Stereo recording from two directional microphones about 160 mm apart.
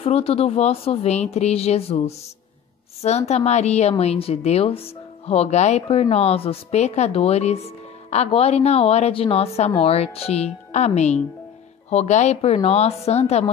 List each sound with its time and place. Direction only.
0.0 s a woman's voice: 40° left (ahead or behind)